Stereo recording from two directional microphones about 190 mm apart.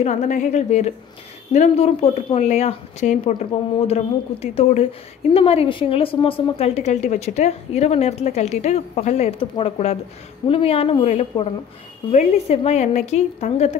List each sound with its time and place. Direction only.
0.0 s a woman's voice: 40° left (ahead or behind)